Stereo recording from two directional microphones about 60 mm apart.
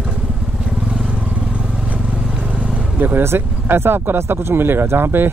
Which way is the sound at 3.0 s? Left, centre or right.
Right.